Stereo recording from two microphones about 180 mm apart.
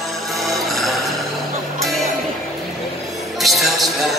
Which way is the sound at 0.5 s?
Centre (ahead or behind).